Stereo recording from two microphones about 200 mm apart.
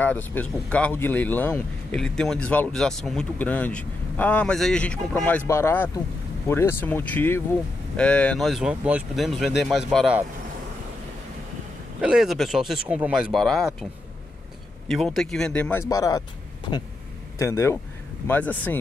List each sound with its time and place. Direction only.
0.0 s speech: 10° left (ahead or behind)
12.0 s speech: 5° right (ahead or behind)
14.9 s speech: centre (ahead or behind)
15.9 s speech: 15° left (ahead or behind)
17.4 s speech: 15° left (ahead or behind)